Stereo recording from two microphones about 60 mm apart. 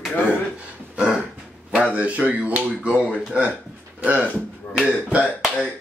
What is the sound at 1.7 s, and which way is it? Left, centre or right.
A man's voice, right.